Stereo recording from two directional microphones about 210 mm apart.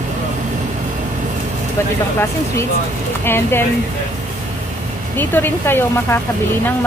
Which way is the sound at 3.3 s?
10° left (ahead or behind).